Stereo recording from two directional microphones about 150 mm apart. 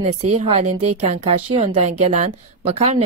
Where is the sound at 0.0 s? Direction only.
45° right (ahead or behind).